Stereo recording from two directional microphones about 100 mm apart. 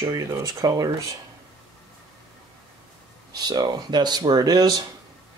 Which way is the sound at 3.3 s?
40° right (ahead or behind).